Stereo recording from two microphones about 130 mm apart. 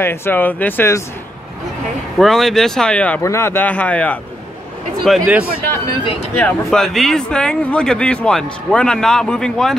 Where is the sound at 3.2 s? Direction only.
20° left (ahead or behind); by 5.3 s centre (ahead or behind).